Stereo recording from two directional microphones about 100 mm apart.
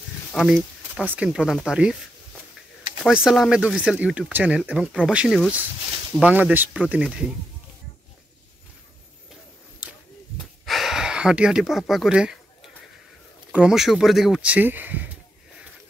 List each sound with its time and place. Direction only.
0.3 s a sound: centre (ahead or behind)
1.1 s speech: 5° right (ahead or behind)
3.1 s speech: 5° right (ahead or behind)
10.3 s a sound: centre (ahead or behind)
13.5 s speech: 10° right (ahead or behind)
14.4 s speech: 15° right (ahead or behind)